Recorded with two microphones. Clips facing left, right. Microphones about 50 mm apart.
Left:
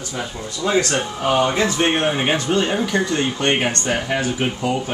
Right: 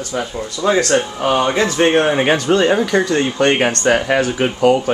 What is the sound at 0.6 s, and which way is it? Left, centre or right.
Speech, right.